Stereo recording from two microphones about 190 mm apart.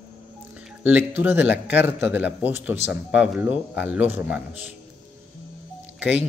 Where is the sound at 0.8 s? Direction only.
10° right (ahead or behind).